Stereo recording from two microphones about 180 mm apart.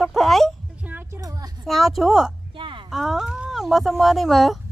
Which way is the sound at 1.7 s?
Centre (ahead or behind).